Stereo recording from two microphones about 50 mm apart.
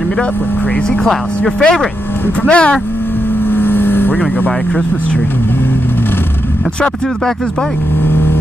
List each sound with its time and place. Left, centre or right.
1.6 s speech: centre
3.4 s vehicle: left